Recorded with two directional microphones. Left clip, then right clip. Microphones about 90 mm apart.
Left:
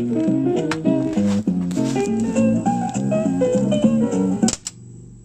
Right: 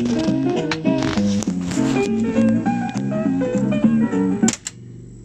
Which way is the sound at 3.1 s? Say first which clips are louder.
Left 3 dB; 45° left (ahead or behind).